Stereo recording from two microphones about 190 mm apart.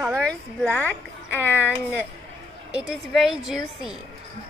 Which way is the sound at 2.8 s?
5° right (ahead or behind).